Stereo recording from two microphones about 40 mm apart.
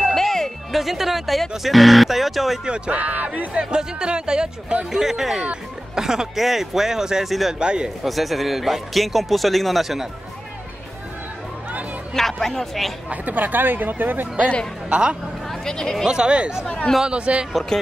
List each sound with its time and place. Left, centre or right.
0.0 s music: centre
0.7 s speech: centre
2.6 s speech: right
3.0 s speech: right
3.5 s speech: right
4.9 s speech: centre
8.0 s speech: centre
12.1 s speech: centre
13.1 s speech: right
14.9 s speech: right
15.6 s speech: centre
16.1 s speech: right
16.6 s speech: left
17.0 s speech: right